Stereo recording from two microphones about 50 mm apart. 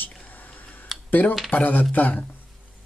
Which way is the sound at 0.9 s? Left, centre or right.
Centre.